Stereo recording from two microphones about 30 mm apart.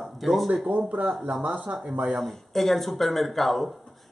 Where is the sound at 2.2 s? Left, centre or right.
Centre.